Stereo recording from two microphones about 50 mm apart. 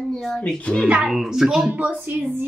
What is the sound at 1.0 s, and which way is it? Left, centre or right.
Speech, centre.